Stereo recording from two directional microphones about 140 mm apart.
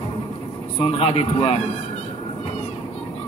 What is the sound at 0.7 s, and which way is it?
Speech, 40° left (ahead or behind).